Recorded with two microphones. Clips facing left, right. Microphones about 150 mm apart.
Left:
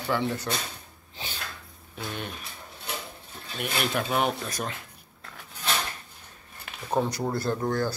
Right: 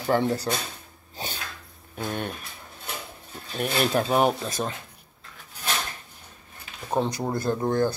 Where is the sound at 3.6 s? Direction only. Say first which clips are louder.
Right 5 dB; 35° right (ahead or behind).